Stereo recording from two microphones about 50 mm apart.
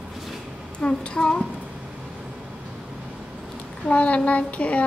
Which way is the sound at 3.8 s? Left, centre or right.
Left.